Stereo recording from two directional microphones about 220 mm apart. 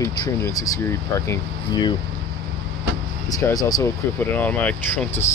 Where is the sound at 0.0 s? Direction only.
15° left (ahead or behind).